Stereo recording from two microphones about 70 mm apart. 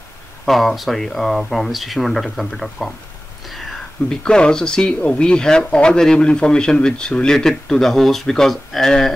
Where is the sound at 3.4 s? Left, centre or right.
Centre.